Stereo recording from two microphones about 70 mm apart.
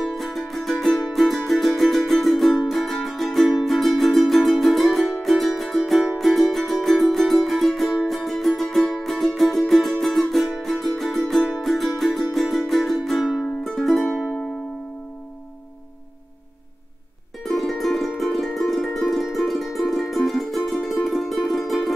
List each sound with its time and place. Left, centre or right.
0.0 s music: centre
17.5 s music: centre